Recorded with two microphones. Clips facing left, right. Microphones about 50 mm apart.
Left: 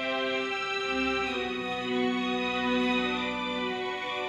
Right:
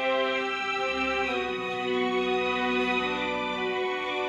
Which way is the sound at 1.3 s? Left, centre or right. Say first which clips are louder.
Right 2 dB; right.